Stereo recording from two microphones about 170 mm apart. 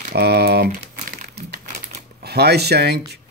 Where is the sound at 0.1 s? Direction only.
70° right (ahead or behind).